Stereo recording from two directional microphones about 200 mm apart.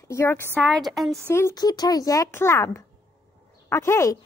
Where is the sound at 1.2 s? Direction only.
15° left (ahead or behind).